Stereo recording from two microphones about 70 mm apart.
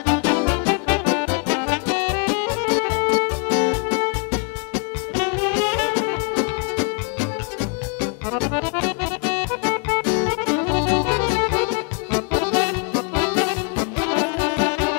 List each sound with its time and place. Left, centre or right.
0.0 s music: left